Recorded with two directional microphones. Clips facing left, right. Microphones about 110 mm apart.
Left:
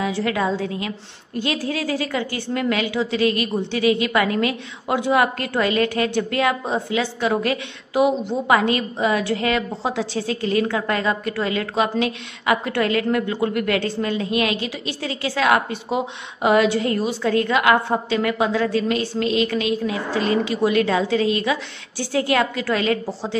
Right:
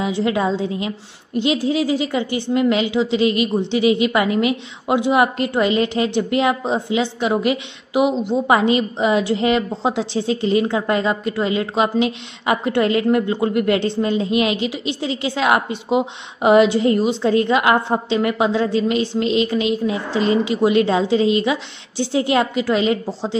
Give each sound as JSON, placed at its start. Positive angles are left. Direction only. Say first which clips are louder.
{"t": 0.0, "sound": "a woman's voice", "louder": "right 3 dB", "side_deg": -20}